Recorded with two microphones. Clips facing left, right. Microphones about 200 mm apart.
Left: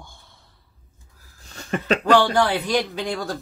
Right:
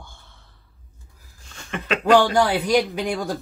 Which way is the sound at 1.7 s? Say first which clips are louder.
Left 4 dB; 40° left (ahead or behind).